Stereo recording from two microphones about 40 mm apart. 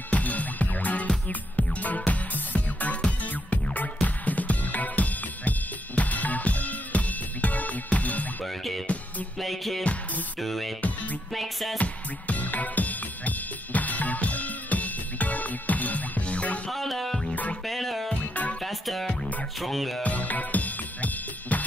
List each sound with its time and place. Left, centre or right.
0.1 s music: left
3.0 s music: left
9.4 s music: centre
11.8 s music: left
16.7 s music: centre
18.3 s music: left
18.6 s music: centre
20.0 s music: left